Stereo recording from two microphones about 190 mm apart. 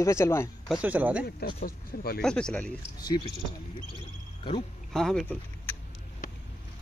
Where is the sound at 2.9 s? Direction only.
20° left (ahead or behind).